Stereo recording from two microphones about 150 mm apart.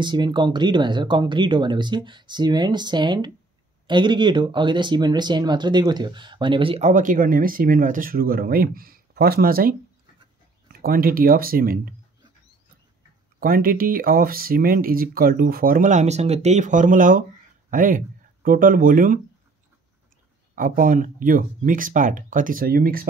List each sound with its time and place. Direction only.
0.0 s speech: 30° right (ahead or behind)
6.8 s speech: 60° right (ahead or behind)
13.4 s speech: 75° right (ahead or behind)
20.5 s speech: 65° right (ahead or behind); by 23.0 s 80° right